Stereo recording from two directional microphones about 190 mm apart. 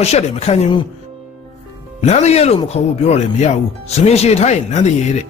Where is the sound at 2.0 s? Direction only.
35° left (ahead or behind).